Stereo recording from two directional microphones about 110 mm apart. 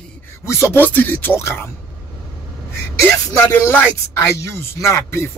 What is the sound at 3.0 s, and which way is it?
Speech, 20° left (ahead or behind).